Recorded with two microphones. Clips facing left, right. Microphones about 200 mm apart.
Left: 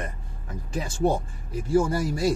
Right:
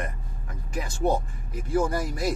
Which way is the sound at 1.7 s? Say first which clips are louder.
Left 3 dB; 30° left (ahead or behind).